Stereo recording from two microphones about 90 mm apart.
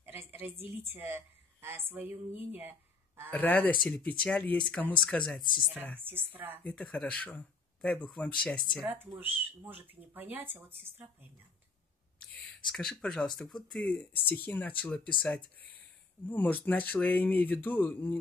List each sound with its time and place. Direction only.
0.0 s a sound: 25° right (ahead or behind)
0.6 s a woman's voice: 20° right (ahead or behind)
3.3 s speech: 15° left (ahead or behind)
6.3 s speech: 20° right (ahead or behind)
6.6 s speech: 10° left (ahead or behind)
8.8 s speech: 25° right (ahead or behind)
12.6 s speech: 5° left (ahead or behind)
13.9 s speech: 15° left (ahead or behind)